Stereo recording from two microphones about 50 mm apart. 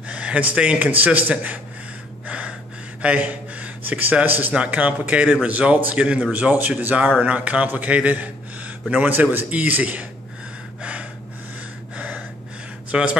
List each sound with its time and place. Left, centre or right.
0.1 s a man's voice: right
2.2 s gasp: right
3.0 s a sound: right
4.0 s a man's voice: right
9.5 s a man's voice: right
10.8 s gasp: right
12.9 s a man's voice: centre